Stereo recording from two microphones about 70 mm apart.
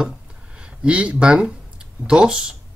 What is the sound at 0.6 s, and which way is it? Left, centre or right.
Speech, centre.